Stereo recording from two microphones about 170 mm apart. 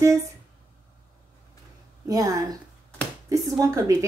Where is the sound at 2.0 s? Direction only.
20° right (ahead or behind).